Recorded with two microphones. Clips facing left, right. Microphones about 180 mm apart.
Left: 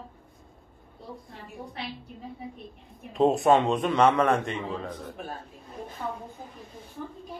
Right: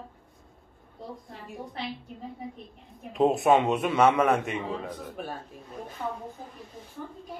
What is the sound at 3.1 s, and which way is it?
A man's voice, centre (ahead or behind).